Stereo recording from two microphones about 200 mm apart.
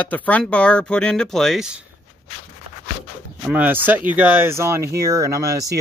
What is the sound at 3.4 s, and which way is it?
Speech, 10° right (ahead or behind).